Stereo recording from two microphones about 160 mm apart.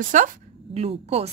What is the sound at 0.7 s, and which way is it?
Speech, 40° right (ahead or behind).